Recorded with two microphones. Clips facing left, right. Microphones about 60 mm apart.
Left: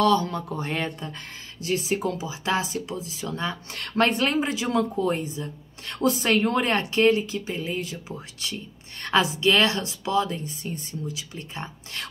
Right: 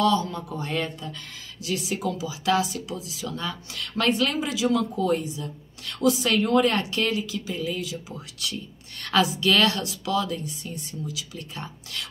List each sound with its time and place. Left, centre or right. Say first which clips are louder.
0.0 s speech: left 2 dB; left
3.7 s speech: left 1 dB; left